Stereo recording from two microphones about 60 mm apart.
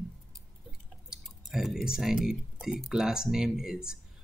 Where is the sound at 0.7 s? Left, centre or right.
Centre.